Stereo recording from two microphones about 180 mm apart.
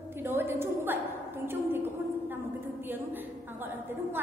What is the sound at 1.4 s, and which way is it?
Speech, 10° right (ahead or behind).